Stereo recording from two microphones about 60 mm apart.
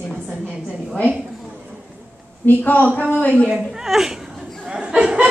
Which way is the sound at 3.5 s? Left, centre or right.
Centre.